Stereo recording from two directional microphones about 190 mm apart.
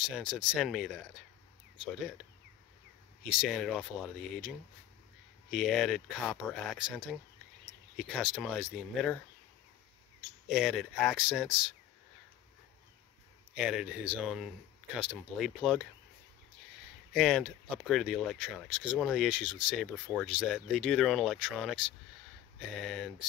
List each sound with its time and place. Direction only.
0.1 s speech: 5° right (ahead or behind)
3.3 s speech: centre (ahead or behind)
8.1 s speech: centre (ahead or behind)
10.5 s speech: centre (ahead or behind)
13.6 s speech: 5° right (ahead or behind)
17.1 s speech: centre (ahead or behind)
22.8 s speech: centre (ahead or behind)